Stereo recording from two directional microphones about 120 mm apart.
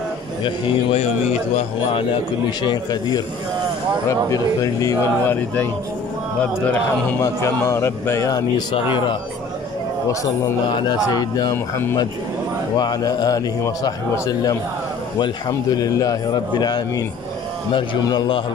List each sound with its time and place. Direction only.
2.6 s a man's voice: 35° left (ahead or behind)
6.7 s a man's voice: 15° left (ahead or behind); by 8.6 s 30° left (ahead or behind)
10.7 s a man's voice: 35° left (ahead or behind)
11.5 s speech: 20° left (ahead or behind)
12.7 s a man's voice: 35° left (ahead or behind)